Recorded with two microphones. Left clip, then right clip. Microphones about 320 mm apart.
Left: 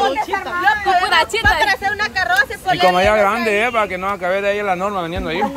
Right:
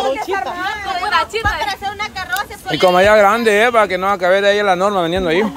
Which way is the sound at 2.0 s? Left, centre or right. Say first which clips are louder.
Left 5 dB; centre.